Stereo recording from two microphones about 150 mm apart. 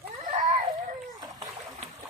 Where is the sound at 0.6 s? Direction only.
25° right (ahead or behind).